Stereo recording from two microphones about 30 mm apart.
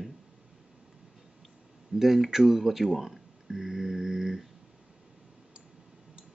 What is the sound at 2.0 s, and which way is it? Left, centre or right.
Speech, centre.